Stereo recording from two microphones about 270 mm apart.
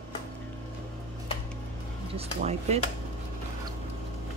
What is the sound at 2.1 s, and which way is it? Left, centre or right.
Speech, right.